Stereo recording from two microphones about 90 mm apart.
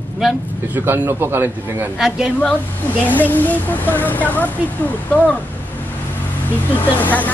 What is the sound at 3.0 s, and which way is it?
Speech, 20° left (ahead or behind).